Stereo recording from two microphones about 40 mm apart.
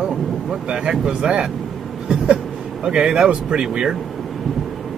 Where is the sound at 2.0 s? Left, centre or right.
Right.